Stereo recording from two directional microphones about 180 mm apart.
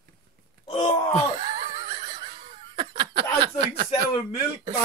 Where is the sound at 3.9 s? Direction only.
30° left (ahead or behind).